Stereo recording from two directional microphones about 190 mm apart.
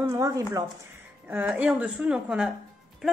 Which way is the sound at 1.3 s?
5° right (ahead or behind).